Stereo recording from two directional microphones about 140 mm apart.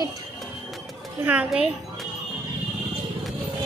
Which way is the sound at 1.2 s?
10° right (ahead or behind).